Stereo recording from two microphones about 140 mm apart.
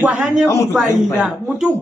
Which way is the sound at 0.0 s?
10° right (ahead or behind).